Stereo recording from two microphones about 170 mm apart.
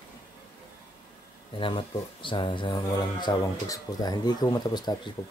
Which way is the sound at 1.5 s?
30° left (ahead or behind).